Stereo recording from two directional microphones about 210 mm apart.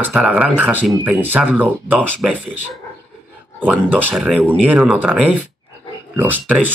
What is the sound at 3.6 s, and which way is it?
Speech, 5° right (ahead or behind).